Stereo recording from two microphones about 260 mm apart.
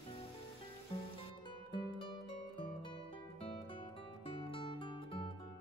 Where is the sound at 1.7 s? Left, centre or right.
Centre.